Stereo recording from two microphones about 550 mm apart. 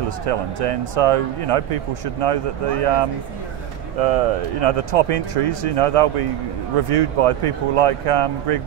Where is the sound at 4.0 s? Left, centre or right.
Right.